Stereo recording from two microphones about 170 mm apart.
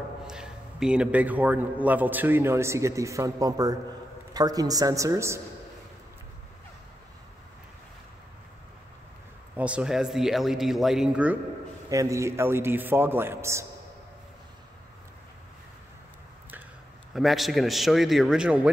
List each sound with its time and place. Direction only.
0.3 s a man's voice: 5° right (ahead or behind)
9.6 s speech: 5° right (ahead or behind)
11.9 s a man's voice: 20° right (ahead or behind)
17.1 s speech: centre (ahead or behind)